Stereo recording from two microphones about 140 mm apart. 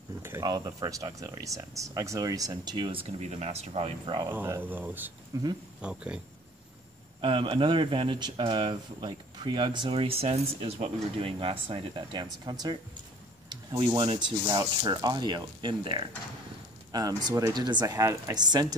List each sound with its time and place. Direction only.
0.4 s speech: 30° right (ahead or behind)
4.3 s speech: 15° right (ahead or behind)
5.3 s speech: 25° right (ahead or behind)
5.8 s speech: 5° right (ahead or behind)
7.2 s speech: 40° right (ahead or behind)
14.4 s speech: 20° right (ahead or behind)
14.8 s speech: 30° right (ahead or behind)
17.2 s speech: 30° right (ahead or behind)